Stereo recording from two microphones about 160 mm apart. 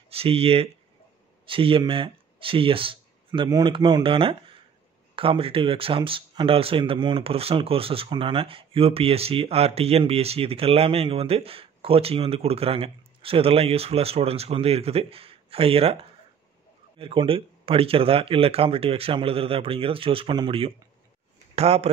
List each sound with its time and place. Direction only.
0.1 s speech: 35° right (ahead or behind)